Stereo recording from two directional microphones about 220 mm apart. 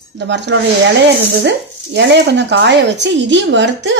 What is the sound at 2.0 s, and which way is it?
A woman's voice, 55° right (ahead or behind).